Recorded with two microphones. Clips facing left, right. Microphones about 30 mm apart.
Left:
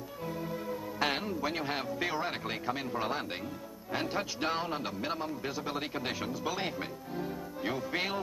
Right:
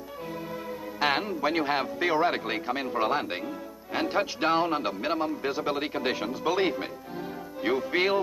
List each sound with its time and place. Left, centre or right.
0.9 s a man's voice: right